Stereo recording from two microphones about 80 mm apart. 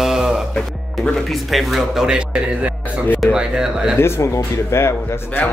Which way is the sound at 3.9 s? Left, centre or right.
Left.